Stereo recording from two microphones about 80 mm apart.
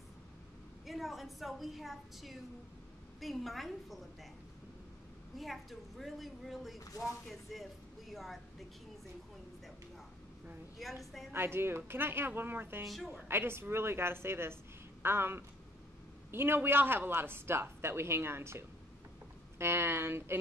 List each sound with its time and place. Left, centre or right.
0.8 s a woman's voice: centre
5.4 s a woman's voice: centre
10.8 s a woman's voice: centre
11.3 s speech: right
12.8 s a woman's voice: centre
13.1 s a woman's voice: right